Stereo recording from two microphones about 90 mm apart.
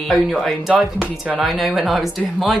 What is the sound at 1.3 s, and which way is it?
Speech, centre (ahead or behind).